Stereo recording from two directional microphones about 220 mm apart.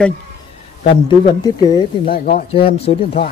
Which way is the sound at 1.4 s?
20° left (ahead or behind).